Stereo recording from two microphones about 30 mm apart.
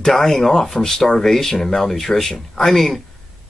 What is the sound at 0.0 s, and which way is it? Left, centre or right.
Speech, centre.